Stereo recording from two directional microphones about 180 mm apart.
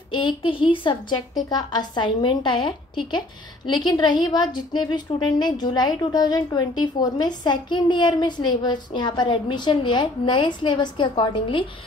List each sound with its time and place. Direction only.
0.1 s a woman's voice: 25° left (ahead or behind)